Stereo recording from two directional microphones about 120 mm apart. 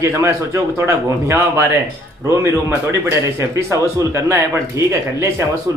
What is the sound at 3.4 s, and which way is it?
A man's voice, 25° right (ahead or behind).